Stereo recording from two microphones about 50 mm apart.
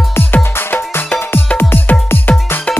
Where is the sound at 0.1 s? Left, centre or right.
Left.